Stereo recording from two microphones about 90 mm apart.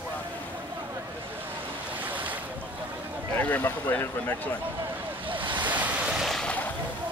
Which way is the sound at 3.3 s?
20° left (ahead or behind).